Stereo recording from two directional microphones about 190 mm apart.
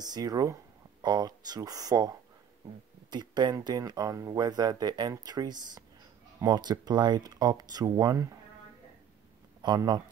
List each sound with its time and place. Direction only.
0.0 s speech: 20° right (ahead or behind)
9.6 s speech: 20° right (ahead or behind)